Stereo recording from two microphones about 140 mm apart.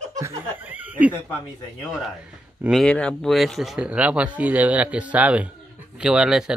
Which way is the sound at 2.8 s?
5° left (ahead or behind).